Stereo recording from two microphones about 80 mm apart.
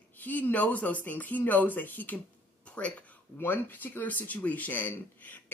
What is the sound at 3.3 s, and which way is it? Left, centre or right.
Speech, left.